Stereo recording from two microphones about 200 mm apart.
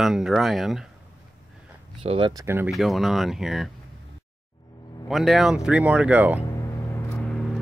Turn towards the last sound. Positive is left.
turn(degrees=5)  # may be behind; listen again after turning